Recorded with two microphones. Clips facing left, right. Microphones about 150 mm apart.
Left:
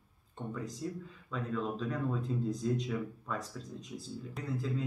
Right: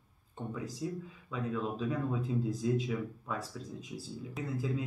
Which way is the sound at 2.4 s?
5° right (ahead or behind).